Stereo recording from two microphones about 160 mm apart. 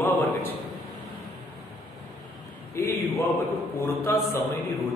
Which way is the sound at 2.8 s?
15° left (ahead or behind).